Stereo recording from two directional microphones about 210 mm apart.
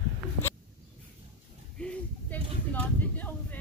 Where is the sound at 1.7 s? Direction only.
5° left (ahead or behind).